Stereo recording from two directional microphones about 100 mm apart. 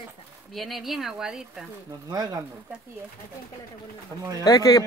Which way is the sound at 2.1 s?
40° right (ahead or behind).